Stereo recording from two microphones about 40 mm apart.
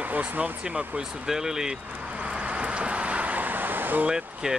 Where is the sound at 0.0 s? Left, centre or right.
Right.